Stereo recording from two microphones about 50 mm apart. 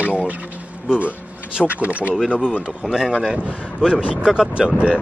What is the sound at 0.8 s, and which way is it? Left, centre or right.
Speech, right.